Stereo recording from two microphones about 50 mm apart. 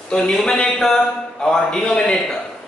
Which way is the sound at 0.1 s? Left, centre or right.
Centre.